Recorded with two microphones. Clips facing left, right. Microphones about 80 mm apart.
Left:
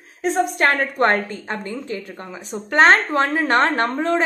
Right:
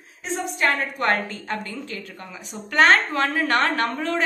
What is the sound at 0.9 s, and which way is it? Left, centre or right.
Speech, left.